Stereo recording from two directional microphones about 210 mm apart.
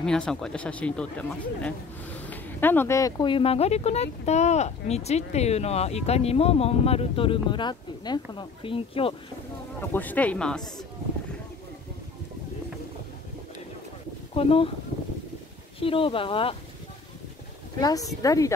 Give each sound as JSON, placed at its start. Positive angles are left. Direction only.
{"t": 0.0, "sound": "speech", "side_deg": 5}
{"t": 9.8, "sound": "speech", "side_deg": 10}
{"t": 14.3, "sound": "speech", "side_deg": 25}
{"t": 15.8, "sound": "speech", "side_deg": 25}
{"t": 17.7, "sound": "speech", "side_deg": 15}